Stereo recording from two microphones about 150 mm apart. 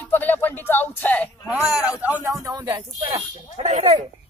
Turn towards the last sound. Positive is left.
turn(degrees=-50)  # may be behind; listen again after turning